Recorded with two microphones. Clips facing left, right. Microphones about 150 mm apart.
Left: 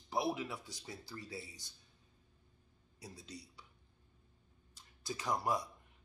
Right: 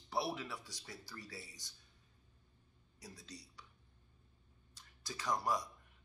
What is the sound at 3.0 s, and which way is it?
Speech, 25° left (ahead or behind).